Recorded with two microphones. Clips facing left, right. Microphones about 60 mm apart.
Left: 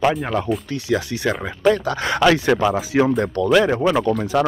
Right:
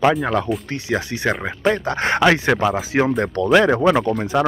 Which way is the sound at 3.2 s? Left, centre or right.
Right.